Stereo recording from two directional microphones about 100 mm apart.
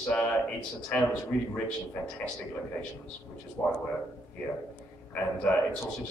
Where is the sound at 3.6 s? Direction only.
15° left (ahead or behind).